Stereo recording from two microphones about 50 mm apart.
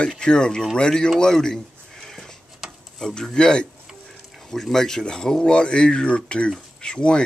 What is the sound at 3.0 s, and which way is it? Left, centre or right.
Speech, centre.